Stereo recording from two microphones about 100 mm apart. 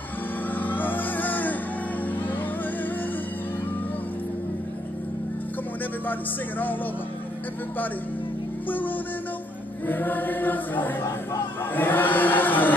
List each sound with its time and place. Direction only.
0.6 s music: 20° left (ahead or behind)
8.6 s music: 20° left (ahead or behind)
9.8 s chant: 20° left (ahead or behind)